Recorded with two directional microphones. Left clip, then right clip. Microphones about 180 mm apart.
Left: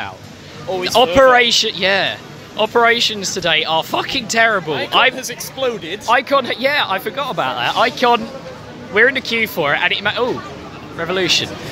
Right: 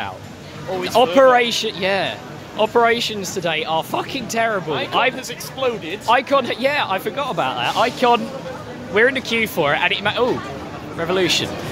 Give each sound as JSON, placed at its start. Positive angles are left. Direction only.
{"t": 0.8, "sound": "speech", "side_deg": 5}
{"t": 5.1, "sound": "speech", "side_deg": 55}
{"t": 6.0, "sound": "speech", "side_deg": 0}